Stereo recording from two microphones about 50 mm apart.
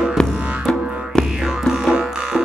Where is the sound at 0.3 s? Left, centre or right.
Right.